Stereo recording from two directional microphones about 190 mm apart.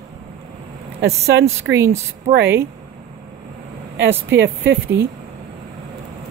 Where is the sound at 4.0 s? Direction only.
70° right (ahead or behind).